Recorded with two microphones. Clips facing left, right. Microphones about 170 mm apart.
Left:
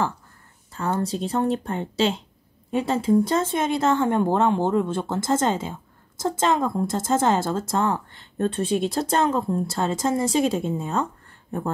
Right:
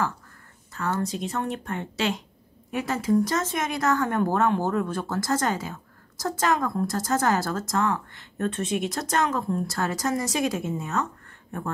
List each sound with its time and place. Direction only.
0.7 s a woman's voice: 30° left (ahead or behind)